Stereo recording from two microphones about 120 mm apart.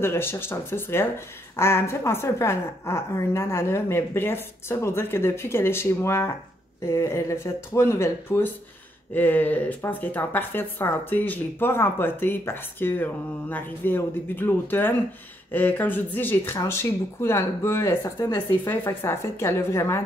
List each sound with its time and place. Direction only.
0.0 s a woman's voice: 20° left (ahead or behind)